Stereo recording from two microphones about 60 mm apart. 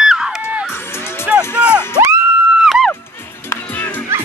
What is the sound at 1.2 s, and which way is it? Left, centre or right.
Music, centre.